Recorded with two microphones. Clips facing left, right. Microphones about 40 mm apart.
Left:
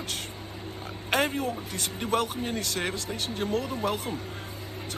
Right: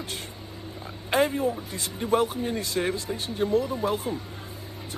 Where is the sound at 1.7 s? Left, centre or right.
Left.